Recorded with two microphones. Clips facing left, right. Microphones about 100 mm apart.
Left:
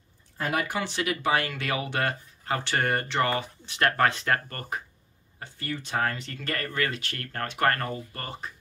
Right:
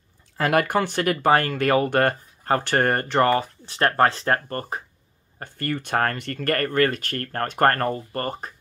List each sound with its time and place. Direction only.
0.4 s speech: 65° right (ahead or behind); by 4.8 s 35° right (ahead or behind)
5.4 s speech: 55° right (ahead or behind)